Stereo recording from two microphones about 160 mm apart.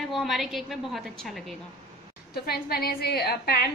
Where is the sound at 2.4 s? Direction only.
75° left (ahead or behind).